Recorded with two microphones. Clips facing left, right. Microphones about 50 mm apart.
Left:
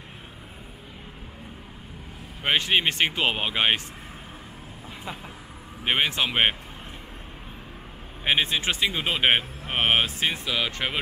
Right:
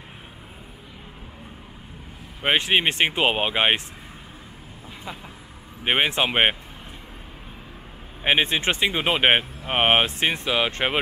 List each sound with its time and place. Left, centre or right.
2.4 s speech: centre
5.9 s speech: right
8.2 s speech: right